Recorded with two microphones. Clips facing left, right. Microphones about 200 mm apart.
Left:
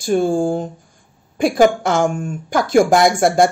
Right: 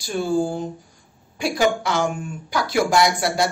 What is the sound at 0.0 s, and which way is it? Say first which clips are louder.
Speech: left 5 dB; 50° left (ahead or behind).